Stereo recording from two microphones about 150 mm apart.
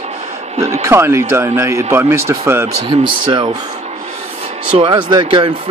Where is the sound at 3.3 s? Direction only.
30° right (ahead or behind).